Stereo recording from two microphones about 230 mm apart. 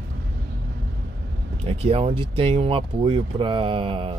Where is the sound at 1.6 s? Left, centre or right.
Right.